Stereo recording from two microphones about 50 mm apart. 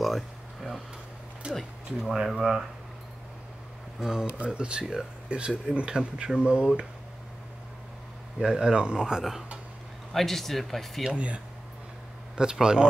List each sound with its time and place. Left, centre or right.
0.0 s a sound: centre
1.4 s speech: right
1.9 s speech: centre
4.0 s speech: centre
8.4 s speech: centre
10.1 s speech: centre
11.1 s speech: right